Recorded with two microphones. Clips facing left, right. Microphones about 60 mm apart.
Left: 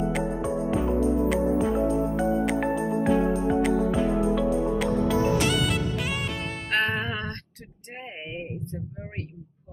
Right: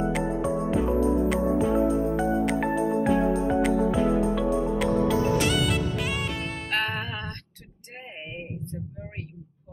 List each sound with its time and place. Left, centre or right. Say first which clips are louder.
0.0 s music: right 1 dB; centre
6.9 s music: left 3 dB; left
8.3 s a sound: left 2 dB; centre